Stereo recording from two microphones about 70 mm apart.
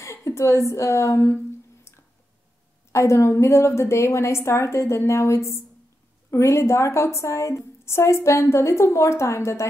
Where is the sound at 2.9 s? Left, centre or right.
Left.